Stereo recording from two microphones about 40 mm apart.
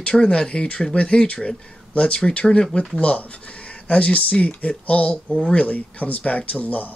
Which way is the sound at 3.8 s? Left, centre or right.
Left.